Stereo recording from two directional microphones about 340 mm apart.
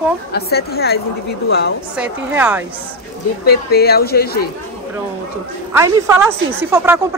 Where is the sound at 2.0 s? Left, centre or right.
Centre.